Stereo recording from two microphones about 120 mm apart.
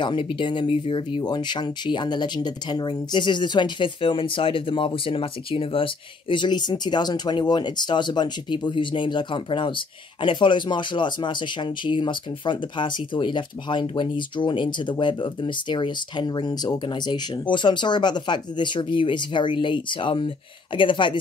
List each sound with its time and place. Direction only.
0.0 s speech: 45° left (ahead or behind)